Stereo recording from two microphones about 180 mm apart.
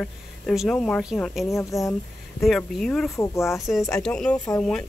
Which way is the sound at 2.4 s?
Centre (ahead or behind).